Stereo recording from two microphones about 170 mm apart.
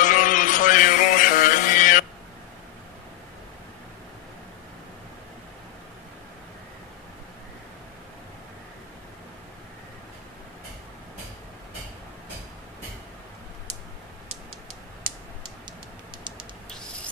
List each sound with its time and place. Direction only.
0.0 s music: 50° left (ahead or behind)